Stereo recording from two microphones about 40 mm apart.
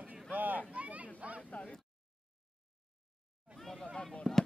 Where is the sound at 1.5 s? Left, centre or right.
Left.